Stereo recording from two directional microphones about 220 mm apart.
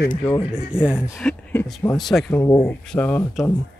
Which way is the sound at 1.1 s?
10° left (ahead or behind).